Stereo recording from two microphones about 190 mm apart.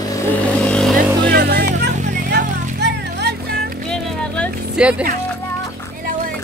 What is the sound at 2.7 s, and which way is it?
Music, 60° right (ahead or behind).